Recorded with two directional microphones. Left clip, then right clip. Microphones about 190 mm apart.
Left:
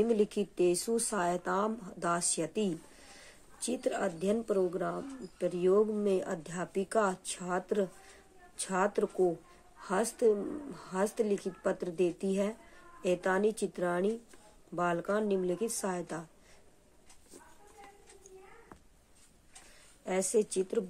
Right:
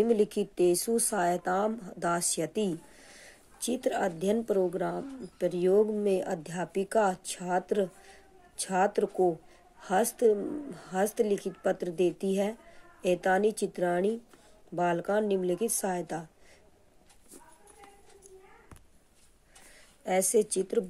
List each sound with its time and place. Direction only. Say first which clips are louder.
0.0 s speech: right 3 dB; 20° right (ahead or behind)
20.1 s speech: right 4 dB; 25° right (ahead or behind)